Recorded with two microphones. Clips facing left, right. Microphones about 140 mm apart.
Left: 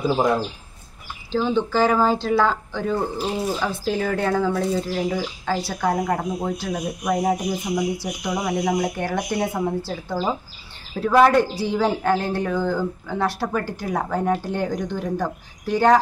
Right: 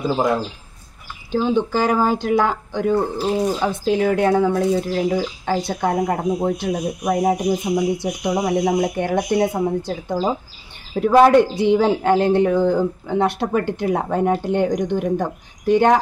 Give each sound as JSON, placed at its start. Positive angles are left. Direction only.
{"t": 0.0, "sound": "speech", "side_deg": 5}
{"t": 1.3, "sound": "speech", "side_deg": -15}